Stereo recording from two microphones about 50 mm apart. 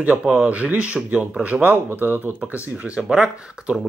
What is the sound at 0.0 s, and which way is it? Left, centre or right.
Speech, right.